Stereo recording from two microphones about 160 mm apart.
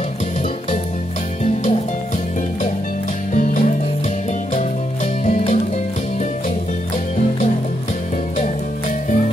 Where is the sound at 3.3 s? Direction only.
55° left (ahead or behind).